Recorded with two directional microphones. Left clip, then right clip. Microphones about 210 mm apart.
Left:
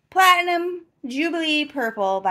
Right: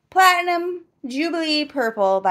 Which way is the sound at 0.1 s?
10° right (ahead or behind).